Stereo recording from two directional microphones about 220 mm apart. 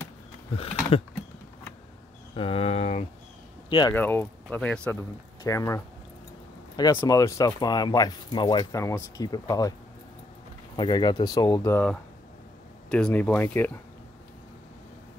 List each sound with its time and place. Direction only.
0.9 s typing: 25° left (ahead or behind)
2.3 s a sound: 25° left (ahead or behind)
3.9 s speech: 10° left (ahead or behind)
6.8 s speech: 15° left (ahead or behind)
10.8 s speech: 20° left (ahead or behind)